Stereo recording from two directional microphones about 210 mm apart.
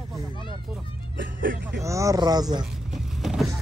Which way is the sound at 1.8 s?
15° right (ahead or behind).